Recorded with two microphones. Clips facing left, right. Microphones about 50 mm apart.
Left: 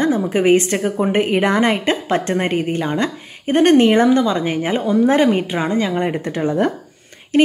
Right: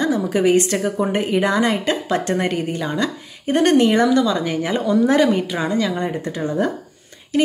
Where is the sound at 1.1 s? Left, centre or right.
Left.